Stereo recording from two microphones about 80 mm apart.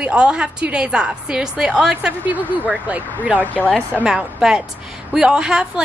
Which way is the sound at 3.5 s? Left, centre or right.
Centre.